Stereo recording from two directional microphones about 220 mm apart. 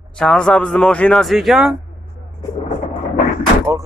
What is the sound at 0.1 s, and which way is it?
Speech, 5° left (ahead or behind).